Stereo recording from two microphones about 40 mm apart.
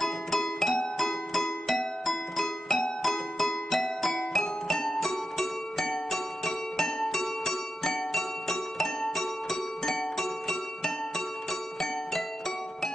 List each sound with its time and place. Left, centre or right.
0.0 s music: centre